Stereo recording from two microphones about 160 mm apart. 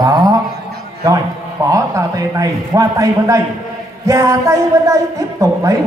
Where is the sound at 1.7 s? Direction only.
20° right (ahead or behind).